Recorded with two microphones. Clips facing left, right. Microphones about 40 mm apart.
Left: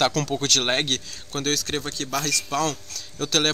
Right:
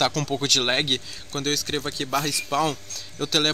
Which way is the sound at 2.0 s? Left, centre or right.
Centre.